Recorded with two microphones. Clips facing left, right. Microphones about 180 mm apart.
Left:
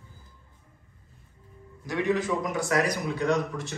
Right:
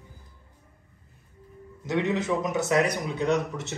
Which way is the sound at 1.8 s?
20° right (ahead or behind).